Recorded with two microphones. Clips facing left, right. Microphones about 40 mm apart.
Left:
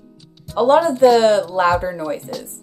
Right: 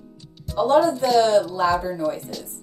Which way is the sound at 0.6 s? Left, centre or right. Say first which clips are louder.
Left 5 dB; left.